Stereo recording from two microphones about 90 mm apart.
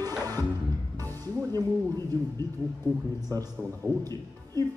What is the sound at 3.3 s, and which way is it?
Speech, 40° right (ahead or behind).